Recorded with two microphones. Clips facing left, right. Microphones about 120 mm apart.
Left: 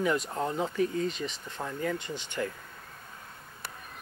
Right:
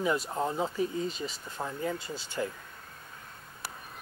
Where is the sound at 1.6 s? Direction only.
35° right (ahead or behind).